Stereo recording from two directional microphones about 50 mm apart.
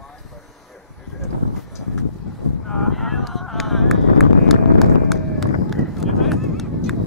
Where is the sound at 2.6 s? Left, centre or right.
Centre.